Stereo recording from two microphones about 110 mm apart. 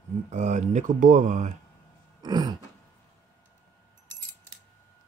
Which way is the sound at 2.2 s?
40° right (ahead or behind).